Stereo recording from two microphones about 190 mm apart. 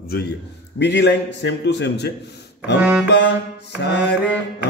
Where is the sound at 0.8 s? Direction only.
65° left (ahead or behind).